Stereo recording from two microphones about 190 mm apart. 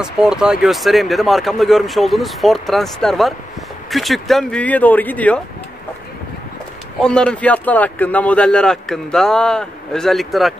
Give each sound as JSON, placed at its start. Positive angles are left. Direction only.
{"t": 0.0, "sound": "a man's voice", "side_deg": -5}
{"t": 7.0, "sound": "a man's voice", "side_deg": 5}